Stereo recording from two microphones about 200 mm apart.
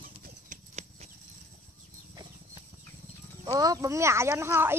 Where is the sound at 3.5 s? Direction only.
15° right (ahead or behind).